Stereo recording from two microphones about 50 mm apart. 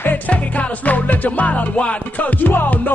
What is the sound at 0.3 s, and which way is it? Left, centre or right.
Music, left.